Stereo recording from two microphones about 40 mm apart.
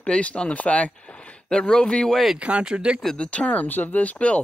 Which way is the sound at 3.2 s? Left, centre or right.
Left.